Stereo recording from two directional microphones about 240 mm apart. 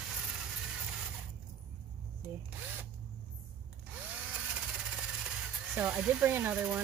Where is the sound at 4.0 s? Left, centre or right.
Centre.